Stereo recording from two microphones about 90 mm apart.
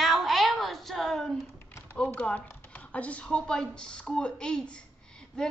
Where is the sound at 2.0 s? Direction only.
15° left (ahead or behind).